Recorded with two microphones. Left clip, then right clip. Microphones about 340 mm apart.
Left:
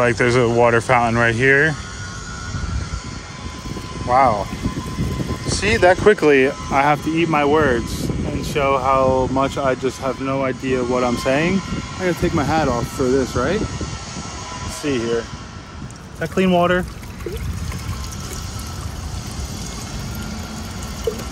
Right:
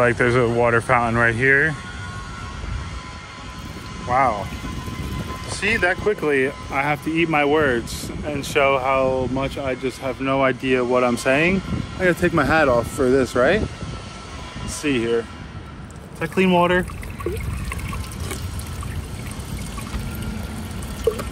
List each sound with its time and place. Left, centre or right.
0.0 s speech: centre
4.1 s speech: centre
5.6 s speech: centre
6.0 s speech: left; by 13.6 s centre
14.8 s speech: centre
16.3 s speech: centre